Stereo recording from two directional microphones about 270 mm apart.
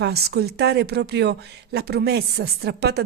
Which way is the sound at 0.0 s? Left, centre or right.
Right.